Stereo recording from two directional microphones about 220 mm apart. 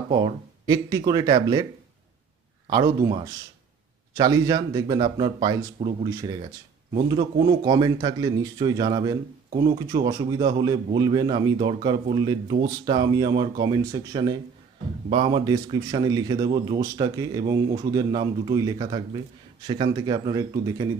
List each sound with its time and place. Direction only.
0.1 s speech: 20° right (ahead or behind)
2.7 s speech: 20° right (ahead or behind)
4.2 s speech: 15° right (ahead or behind)